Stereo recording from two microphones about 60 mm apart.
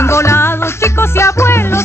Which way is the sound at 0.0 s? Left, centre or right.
Left.